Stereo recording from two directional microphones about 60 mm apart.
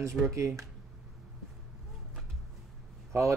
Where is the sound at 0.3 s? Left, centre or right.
Right.